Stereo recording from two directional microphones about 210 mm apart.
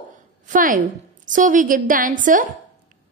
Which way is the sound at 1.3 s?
40° right (ahead or behind).